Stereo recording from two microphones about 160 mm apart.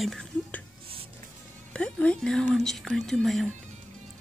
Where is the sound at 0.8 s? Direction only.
35° right (ahead or behind).